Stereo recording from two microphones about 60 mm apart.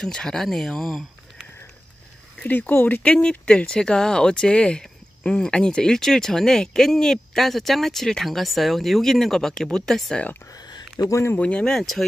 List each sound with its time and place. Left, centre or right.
0.0 s speech: centre
2.4 s speech: left
3.0 s speech: centre
11.1 s speech: left
11.3 s speech: left
11.6 s speech: centre